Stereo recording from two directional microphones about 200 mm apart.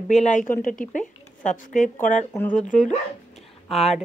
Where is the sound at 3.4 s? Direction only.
Centre (ahead or behind).